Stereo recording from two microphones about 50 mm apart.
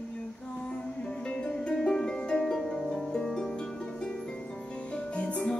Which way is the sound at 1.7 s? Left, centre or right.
Centre.